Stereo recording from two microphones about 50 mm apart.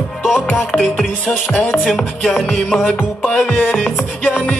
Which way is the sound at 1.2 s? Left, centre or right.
Left.